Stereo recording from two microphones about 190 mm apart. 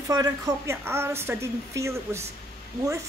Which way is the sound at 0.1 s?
15° right (ahead or behind).